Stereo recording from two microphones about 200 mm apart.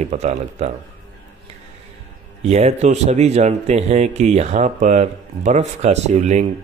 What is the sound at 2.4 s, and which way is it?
Speech, 35° right (ahead or behind).